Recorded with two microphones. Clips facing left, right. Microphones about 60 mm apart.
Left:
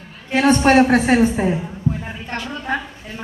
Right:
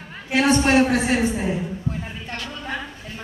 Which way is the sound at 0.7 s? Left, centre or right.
Left.